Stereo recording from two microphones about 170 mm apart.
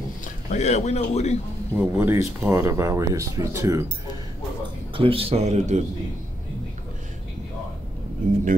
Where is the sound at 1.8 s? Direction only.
15° right (ahead or behind).